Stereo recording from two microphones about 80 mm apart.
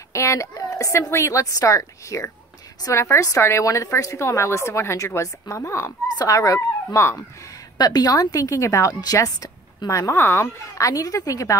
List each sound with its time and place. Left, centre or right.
0.1 s a woman's voice: left
7.7 s a woman's voice: left